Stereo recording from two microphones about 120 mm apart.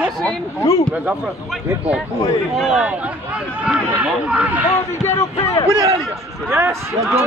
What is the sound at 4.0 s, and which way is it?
Speech, 10° right (ahead or behind).